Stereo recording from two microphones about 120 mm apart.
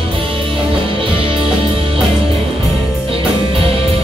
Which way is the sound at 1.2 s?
50° right (ahead or behind).